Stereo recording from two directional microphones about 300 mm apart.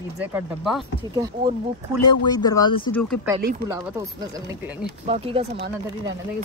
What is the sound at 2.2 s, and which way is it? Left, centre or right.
Speech, centre.